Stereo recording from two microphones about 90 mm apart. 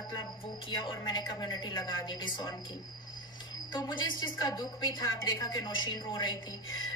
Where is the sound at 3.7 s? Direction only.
50° left (ahead or behind).